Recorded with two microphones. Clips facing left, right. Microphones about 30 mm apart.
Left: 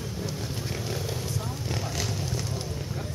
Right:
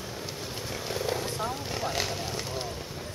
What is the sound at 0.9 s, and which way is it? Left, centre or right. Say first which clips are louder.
Wild animals: right 2 dB; right.